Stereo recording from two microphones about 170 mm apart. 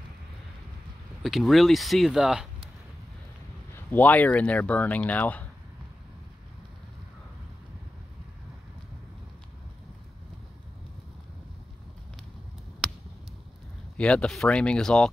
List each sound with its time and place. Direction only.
1.2 s speech: centre (ahead or behind)
3.7 s speech: 10° left (ahead or behind)
13.9 s speech: 5° left (ahead or behind)